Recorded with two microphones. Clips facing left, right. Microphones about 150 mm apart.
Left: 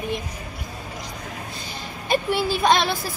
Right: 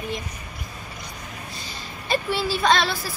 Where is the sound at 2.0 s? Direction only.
15° left (ahead or behind).